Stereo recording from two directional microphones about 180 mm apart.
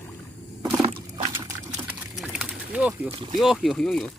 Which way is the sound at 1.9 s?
5° right (ahead or behind).